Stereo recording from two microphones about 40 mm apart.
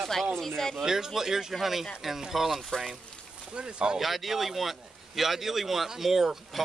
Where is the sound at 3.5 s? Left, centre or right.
Right.